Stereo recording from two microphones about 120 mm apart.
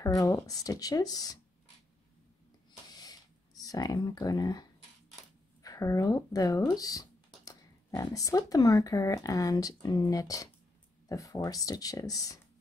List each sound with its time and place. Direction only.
0.0 s speech: 30° left (ahead or behind)
2.9 s a sound: 30° left (ahead or behind)
5.6 s speech: 30° left (ahead or behind)